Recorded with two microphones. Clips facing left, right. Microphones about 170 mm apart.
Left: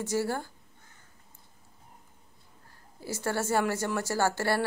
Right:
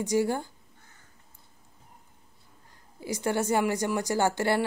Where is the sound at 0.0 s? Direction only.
15° right (ahead or behind).